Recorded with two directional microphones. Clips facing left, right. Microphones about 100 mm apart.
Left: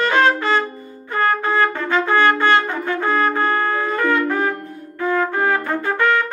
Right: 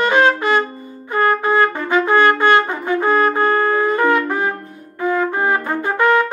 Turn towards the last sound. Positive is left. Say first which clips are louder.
# right 3 dB
turn(degrees=-15)  # may be behind; listen again after turning